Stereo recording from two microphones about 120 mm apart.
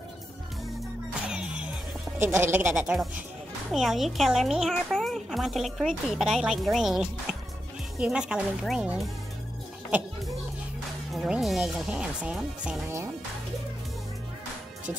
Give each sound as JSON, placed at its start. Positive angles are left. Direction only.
{"t": 1.3, "sound": "music", "side_deg": -10}
{"t": 2.1, "sound": "speech", "side_deg": -20}
{"t": 2.7, "sound": "speech", "side_deg": -5}
{"t": 11.1, "sound": "speech", "side_deg": -5}
{"t": 12.8, "sound": "speech", "side_deg": -20}